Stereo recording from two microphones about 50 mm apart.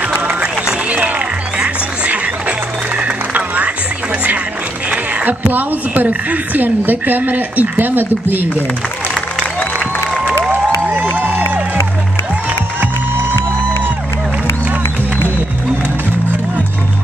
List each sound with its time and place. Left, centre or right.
0.2 s run: right
0.8 s music: right
4.9 s a woman's voice: right
10.5 s music: right